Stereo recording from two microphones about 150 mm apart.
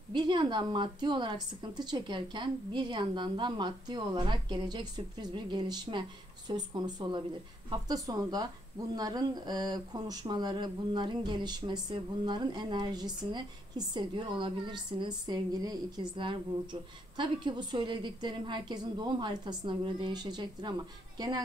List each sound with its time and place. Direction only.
0.1 s a woman's voice: 30° right (ahead or behind)